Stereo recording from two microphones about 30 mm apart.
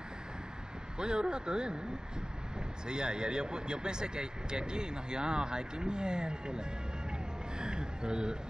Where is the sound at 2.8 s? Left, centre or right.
Right.